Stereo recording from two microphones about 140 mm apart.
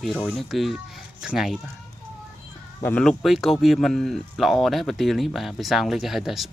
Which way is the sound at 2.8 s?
10° left (ahead or behind).